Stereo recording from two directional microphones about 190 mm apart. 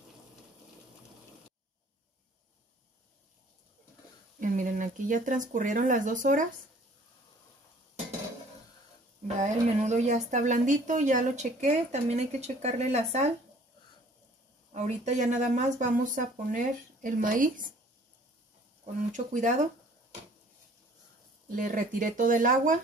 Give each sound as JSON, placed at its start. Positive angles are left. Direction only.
{"t": 4.4, "sound": "speech", "side_deg": -45}
{"t": 9.4, "sound": "speech", "side_deg": -40}
{"t": 14.7, "sound": "speech", "side_deg": -35}
{"t": 19.1, "sound": "speech", "side_deg": -40}
{"t": 21.5, "sound": "speech", "side_deg": -45}